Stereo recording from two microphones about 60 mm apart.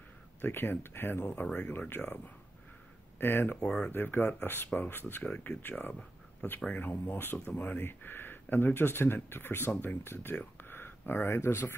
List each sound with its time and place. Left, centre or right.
0.4 s speech: left
3.5 s speech: centre
3.9 s speech: left
10.6 s a sound: left